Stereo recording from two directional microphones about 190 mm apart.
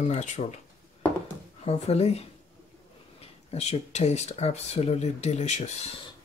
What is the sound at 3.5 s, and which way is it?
Speech, 35° left (ahead or behind).